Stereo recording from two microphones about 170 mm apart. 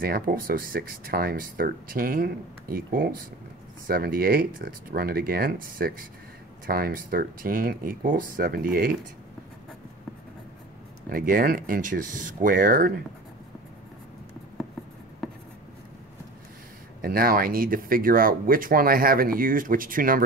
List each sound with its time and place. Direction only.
0.0 s speech: 60° right (ahead or behind)
11.1 s speech: 55° right (ahead or behind)
17.0 s speech: 60° right (ahead or behind)